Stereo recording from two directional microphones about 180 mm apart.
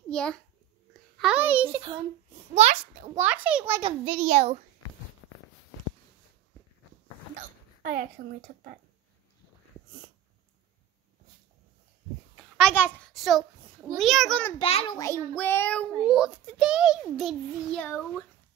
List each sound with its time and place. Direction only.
0.1 s a child's voice: 5° left (ahead or behind)
1.7 s a child's voice: 30° right (ahead or behind)
2.5 s a child's voice: 40° right (ahead or behind)
3.2 s a child's voice: 10° right (ahead or behind)
3.8 s a child's voice: 30° right (ahead or behind)
7.3 s hiccup: 50° right (ahead or behind)
12.4 s a sound: centre (ahead or behind)
12.7 s a child's voice: 10° left (ahead or behind)
13.1 s a child's voice: centre (ahead or behind)
14.6 s a child's voice: 30° left (ahead or behind)
15.3 s a child's voice: 10° left (ahead or behind)
16.1 s a child's voice: 5° right (ahead or behind)